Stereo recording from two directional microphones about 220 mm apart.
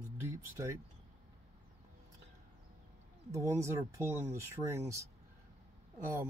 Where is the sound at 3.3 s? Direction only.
15° right (ahead or behind).